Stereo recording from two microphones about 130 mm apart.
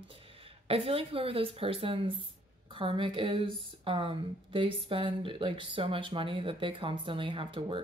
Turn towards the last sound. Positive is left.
turn(degrees=-45)  # may be behind; listen again after turning